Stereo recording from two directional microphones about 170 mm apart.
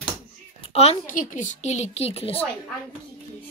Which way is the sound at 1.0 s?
50° left (ahead or behind).